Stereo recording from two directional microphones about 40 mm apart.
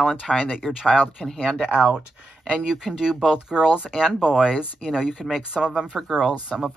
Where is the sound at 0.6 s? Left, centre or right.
Centre.